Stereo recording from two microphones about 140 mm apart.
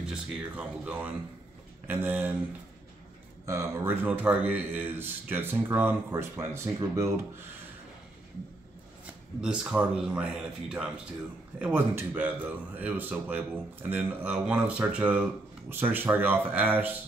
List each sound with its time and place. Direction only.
0.0 s a man's voice: 5° right (ahead or behind)
3.4 s a man's voice: 20° right (ahead or behind)
9.4 s a man's voice: 5° right (ahead or behind)